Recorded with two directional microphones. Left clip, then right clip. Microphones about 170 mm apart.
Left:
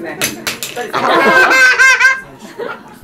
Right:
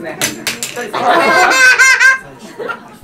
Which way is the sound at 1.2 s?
10° right (ahead or behind).